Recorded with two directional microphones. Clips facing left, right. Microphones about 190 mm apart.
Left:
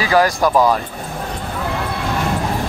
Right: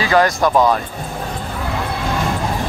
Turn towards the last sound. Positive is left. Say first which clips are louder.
# even
turn(degrees=5)  # may be behind; listen again after turning